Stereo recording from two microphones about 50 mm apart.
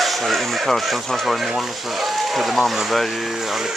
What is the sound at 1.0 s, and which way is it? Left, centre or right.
Speech, centre.